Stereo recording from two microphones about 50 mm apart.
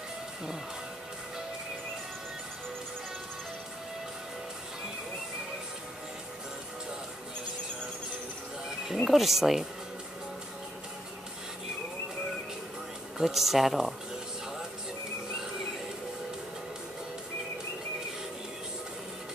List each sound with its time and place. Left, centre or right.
8.9 s speech: centre
13.2 s speech: centre